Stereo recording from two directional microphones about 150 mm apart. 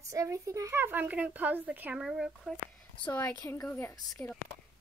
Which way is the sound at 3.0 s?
10° left (ahead or behind).